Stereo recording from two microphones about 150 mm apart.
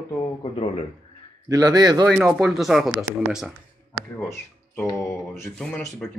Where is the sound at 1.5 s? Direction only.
25° right (ahead or behind).